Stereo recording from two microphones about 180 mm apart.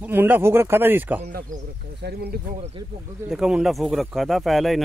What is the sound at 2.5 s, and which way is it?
Speech, 35° right (ahead or behind).